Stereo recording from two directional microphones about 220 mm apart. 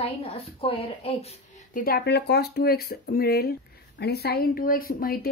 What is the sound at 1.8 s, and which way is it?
Speech, 45° left (ahead or behind).